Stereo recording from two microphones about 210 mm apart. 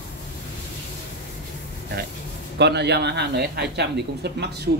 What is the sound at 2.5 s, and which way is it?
Speech, 55° right (ahead or behind).